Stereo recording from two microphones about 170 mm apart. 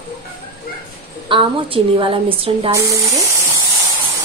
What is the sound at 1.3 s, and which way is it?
A woman's voice, 30° right (ahead or behind).